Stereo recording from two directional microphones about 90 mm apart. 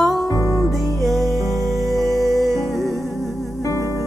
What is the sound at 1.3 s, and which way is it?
Music, 40° right (ahead or behind).